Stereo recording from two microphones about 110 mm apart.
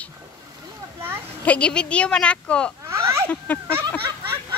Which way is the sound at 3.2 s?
15° left (ahead or behind).